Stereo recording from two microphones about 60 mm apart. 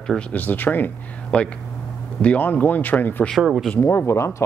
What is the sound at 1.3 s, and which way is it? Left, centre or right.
Speech, left.